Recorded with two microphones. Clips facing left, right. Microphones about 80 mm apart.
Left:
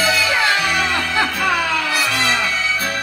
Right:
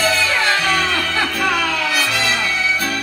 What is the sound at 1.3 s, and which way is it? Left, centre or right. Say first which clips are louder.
Music: even; left.